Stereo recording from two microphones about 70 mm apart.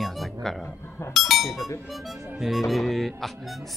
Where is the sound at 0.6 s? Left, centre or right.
Left.